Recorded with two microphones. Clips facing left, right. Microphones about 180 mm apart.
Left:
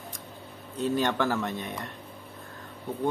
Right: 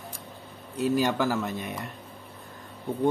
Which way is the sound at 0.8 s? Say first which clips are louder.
Right 2 dB; 10° right (ahead or behind).